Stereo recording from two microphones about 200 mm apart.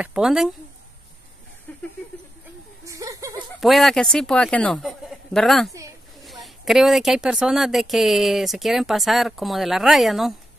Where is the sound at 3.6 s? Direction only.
Centre (ahead or behind).